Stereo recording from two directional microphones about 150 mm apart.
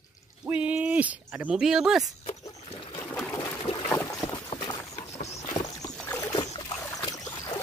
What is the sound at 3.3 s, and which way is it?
Boat, 20° left (ahead or behind).